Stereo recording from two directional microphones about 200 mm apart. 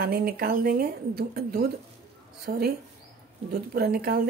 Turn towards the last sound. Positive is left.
turn(degrees=-50)  # may be behind; listen again after turning